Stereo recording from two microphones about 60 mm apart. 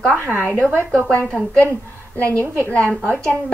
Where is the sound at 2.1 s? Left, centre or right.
Left.